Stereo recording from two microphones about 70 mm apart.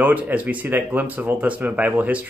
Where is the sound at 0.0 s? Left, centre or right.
Right.